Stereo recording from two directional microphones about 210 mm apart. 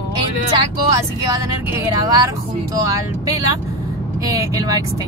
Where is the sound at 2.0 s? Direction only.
15° right (ahead or behind).